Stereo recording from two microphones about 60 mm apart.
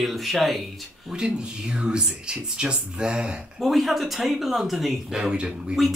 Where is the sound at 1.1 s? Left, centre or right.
Centre.